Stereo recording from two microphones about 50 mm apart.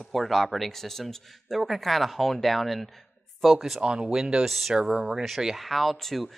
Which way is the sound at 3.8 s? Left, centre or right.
Centre.